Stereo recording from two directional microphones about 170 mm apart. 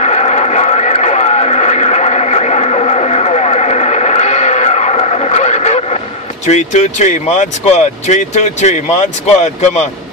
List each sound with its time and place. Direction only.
0.0 s radio: 40° left (ahead or behind)
6.4 s speech: 45° left (ahead or behind)